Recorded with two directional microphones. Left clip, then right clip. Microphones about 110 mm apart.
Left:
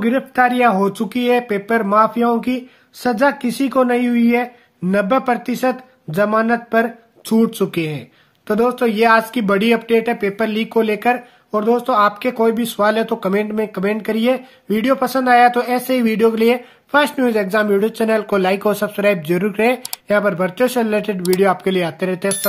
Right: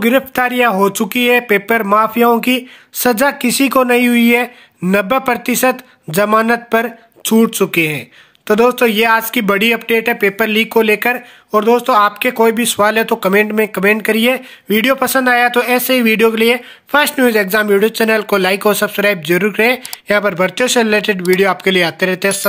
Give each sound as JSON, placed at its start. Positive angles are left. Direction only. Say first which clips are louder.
{"t": 0.0, "sound": "speech", "louder": "right 2 dB", "side_deg": -35}
{"t": 7.2, "sound": "speech", "louder": "right 5 dB", "side_deg": -20}
{"t": 20.1, "sound": "speech", "louder": "right 3 dB", "side_deg": -15}